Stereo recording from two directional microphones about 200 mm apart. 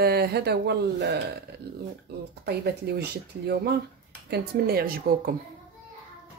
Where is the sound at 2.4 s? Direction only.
55° right (ahead or behind).